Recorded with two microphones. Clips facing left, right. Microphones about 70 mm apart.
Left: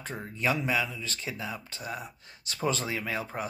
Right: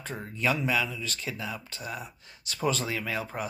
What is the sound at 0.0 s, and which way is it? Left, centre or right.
Speech, left.